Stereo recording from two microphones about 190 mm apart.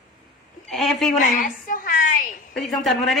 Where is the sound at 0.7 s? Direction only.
Centre (ahead or behind).